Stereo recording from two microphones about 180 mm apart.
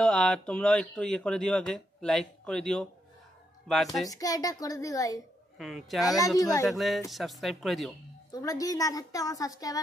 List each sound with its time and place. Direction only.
0.0 s speech: 5° left (ahead or behind)
4.1 s a woman's voice: 20° left (ahead or behind)
5.6 s speech: centre (ahead or behind)
6.0 s a woman's voice: 20° left (ahead or behind)
6.7 s speech: centre (ahead or behind)
8.3 s a woman's voice: 20° left (ahead or behind)